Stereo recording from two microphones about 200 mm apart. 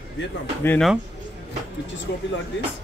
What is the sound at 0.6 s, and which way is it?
Speech, 10° left (ahead or behind).